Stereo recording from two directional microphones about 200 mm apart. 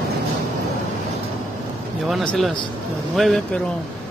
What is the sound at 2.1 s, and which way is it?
Speech, 5° left (ahead or behind).